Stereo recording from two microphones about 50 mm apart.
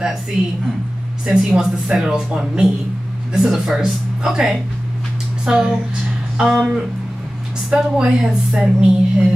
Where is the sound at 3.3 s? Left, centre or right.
Centre.